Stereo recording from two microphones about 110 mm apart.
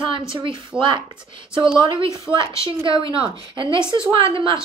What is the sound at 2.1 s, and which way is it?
A woman's voice, 50° right (ahead or behind).